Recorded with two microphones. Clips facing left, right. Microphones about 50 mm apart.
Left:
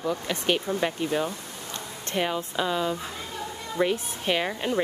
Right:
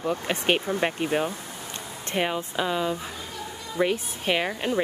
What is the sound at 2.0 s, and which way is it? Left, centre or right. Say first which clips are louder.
Speech: right 1 dB; centre.